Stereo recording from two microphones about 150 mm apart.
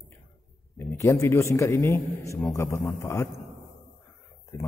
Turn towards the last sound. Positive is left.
turn(degrees=20)  # may be behind; listen again after turning